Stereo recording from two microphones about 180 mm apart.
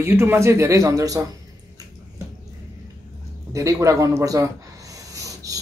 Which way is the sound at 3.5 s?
20° right (ahead or behind).